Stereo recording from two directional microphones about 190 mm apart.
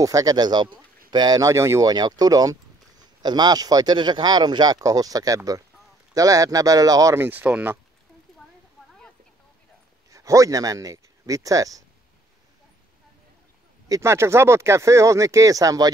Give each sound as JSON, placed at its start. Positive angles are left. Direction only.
{"t": 0.0, "sound": "a man's voice", "side_deg": -20}
{"t": 10.1, "sound": "speech", "side_deg": -15}
{"t": 13.8, "sound": "speech", "side_deg": -15}